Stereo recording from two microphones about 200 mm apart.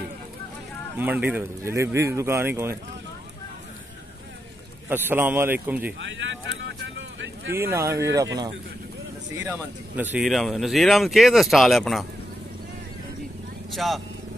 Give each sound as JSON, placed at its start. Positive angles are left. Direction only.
{"t": 0.9, "sound": "speech", "side_deg": -10}
{"t": 4.8, "sound": "speech", "side_deg": -10}
{"t": 5.9, "sound": "speech", "side_deg": -65}
{"t": 7.0, "sound": "vehicle", "side_deg": -65}
{"t": 7.7, "sound": "speech", "side_deg": -15}
{"t": 9.4, "sound": "speech", "side_deg": -10}
{"t": 13.7, "sound": "speech", "side_deg": 0}